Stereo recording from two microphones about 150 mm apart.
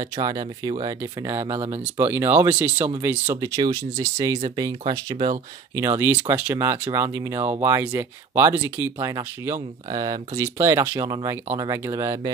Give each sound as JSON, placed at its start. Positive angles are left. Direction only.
{"t": 0.0, "sound": "speech", "side_deg": -25}
{"t": 3.3, "sound": "speech", "side_deg": -25}
{"t": 5.8, "sound": "speech", "side_deg": -15}